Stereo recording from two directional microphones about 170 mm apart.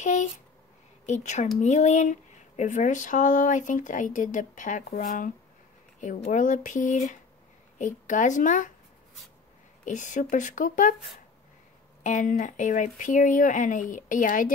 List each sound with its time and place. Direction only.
0.0 s speech: 45° left (ahead or behind)
9.8 s speech: 45° left (ahead or behind)
12.0 s speech: 50° left (ahead or behind)